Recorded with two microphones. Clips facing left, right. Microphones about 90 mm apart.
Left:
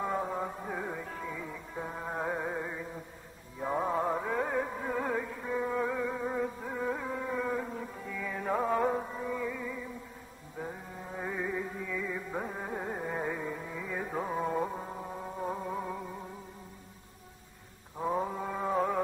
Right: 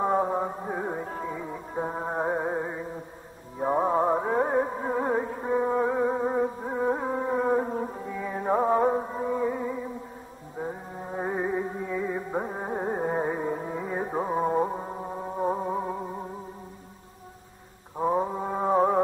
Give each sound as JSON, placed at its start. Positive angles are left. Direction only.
{"t": 0.0, "sound": "music", "side_deg": -35}
{"t": 17.9, "sound": "mantra", "side_deg": -25}